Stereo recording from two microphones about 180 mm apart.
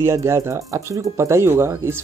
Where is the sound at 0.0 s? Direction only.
15° right (ahead or behind).